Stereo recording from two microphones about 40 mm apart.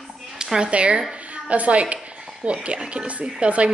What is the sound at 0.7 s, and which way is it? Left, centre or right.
Speech, right.